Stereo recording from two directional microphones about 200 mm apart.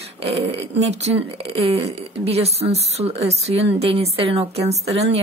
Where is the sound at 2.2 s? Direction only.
30° right (ahead or behind).